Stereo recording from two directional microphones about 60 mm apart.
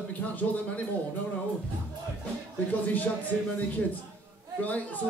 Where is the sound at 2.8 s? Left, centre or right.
Left.